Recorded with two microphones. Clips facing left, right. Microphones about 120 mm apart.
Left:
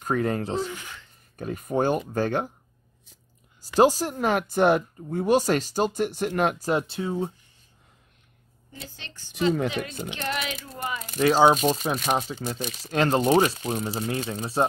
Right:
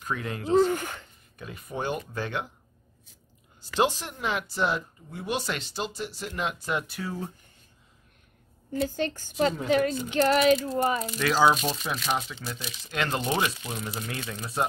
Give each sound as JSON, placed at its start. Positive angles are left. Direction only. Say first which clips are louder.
{"t": 0.0, "sound": "speech", "louder": "left 7 dB", "side_deg": 40}
{"t": 0.6, "sound": "speech", "louder": "right 9 dB", "side_deg": -50}
{"t": 1.3, "sound": "speech", "louder": "left 9 dB", "side_deg": 45}
{"t": 3.6, "sound": "speech", "louder": "left 6 dB", "side_deg": 40}
{"t": 8.7, "sound": "speech", "louder": "right 16 dB", "side_deg": -45}
{"t": 11.1, "sound": "speech", "louder": "left 6 dB", "side_deg": 40}